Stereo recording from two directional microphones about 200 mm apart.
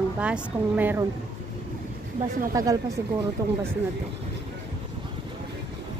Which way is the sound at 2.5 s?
15° right (ahead or behind).